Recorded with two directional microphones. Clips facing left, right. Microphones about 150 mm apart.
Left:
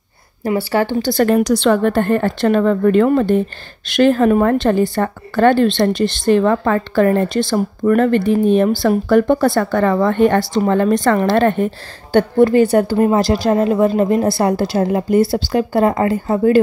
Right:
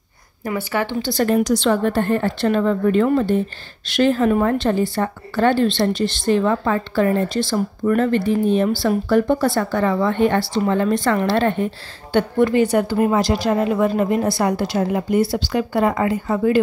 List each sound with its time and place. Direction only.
0.4 s a woman's voice: 30° left (ahead or behind)
1.0 s a woman's voice: 60° left (ahead or behind); by 16.5 s 40° left (ahead or behind)